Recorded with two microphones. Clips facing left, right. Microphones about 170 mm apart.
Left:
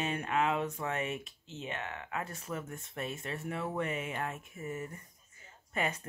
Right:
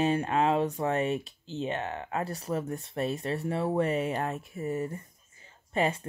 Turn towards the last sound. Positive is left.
turn(degrees=-30)  # may be behind; listen again after turning